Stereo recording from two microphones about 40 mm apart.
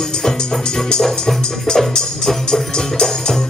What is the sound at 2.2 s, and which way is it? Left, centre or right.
Music, centre.